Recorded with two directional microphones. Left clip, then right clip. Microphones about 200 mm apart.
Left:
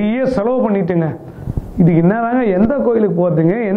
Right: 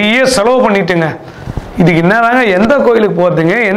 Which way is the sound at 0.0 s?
5° right (ahead or behind).